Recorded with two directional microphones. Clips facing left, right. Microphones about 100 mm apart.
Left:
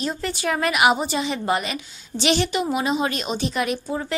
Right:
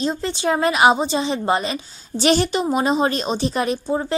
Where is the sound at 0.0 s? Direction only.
25° right (ahead or behind).